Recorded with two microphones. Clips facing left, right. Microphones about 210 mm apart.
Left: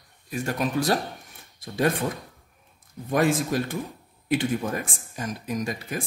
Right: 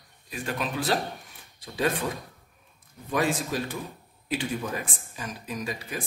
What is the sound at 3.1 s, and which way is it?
Speech, 55° left (ahead or behind).